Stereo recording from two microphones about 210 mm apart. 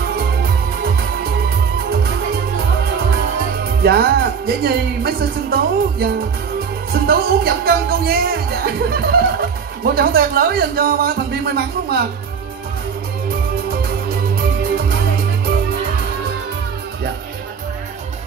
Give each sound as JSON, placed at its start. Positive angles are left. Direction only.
{"t": 0.1, "sound": "music", "side_deg": -50}
{"t": 3.8, "sound": "speech", "side_deg": -50}